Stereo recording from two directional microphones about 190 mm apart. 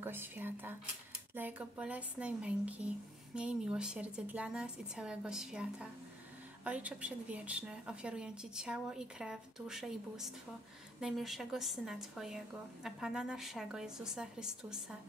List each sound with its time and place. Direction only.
0.0 s a woman's voice: 10° right (ahead or behind)